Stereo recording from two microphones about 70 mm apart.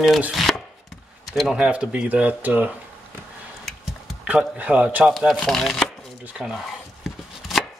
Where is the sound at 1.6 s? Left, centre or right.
Centre.